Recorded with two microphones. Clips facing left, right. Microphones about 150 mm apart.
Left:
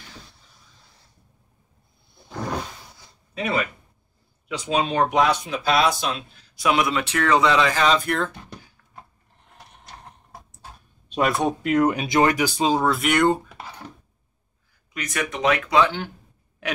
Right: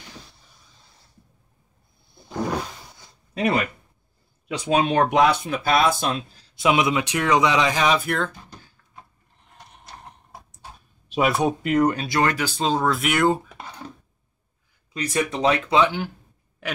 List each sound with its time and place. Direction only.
3.3 s speech: 40° right (ahead or behind)
4.6 s speech: 60° right (ahead or behind); by 8.1 s 10° right (ahead or behind)
8.3 s speech: 65° left (ahead or behind)
11.1 s speech: 5° right (ahead or behind)
11.9 s speech: 20° left (ahead or behind)
14.9 s speech: 30° right (ahead or behind)
16.6 s speech: centre (ahead or behind)